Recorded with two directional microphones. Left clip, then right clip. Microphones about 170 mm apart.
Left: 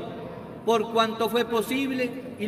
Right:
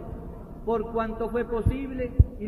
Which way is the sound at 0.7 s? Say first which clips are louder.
Left 5 dB; 10° left (ahead or behind).